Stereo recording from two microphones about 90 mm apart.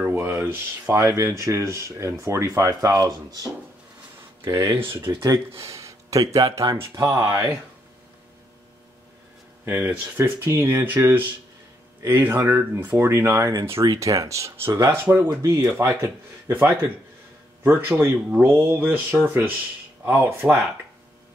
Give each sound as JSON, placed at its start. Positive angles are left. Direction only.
{"t": 0.0, "sound": "a sound", "side_deg": -30}
{"t": 0.9, "sound": "speech", "side_deg": -35}
{"t": 4.5, "sound": "speech", "side_deg": -40}
{"t": 4.7, "sound": "speech", "side_deg": -25}
{"t": 9.7, "sound": "speech", "side_deg": -20}
{"t": 13.4, "sound": "speech", "side_deg": -40}
{"t": 17.6, "sound": "speech", "side_deg": -20}